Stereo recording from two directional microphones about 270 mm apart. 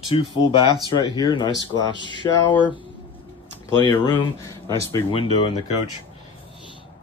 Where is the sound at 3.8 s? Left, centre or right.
Centre.